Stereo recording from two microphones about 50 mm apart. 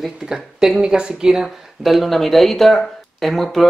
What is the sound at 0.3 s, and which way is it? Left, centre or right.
Speech, centre.